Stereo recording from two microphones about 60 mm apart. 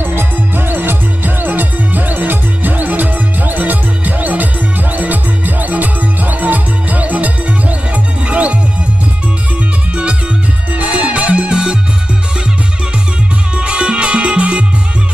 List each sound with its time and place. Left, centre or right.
0.0 s music: right
10.8 s music: right
13.6 s music: centre